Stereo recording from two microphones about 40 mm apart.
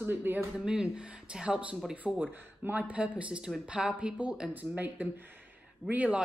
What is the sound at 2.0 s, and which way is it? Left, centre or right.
Speech, left.